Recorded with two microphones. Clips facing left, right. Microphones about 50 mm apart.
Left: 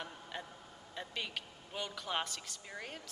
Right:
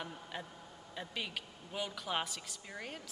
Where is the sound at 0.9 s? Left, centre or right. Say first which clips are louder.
Even; centre.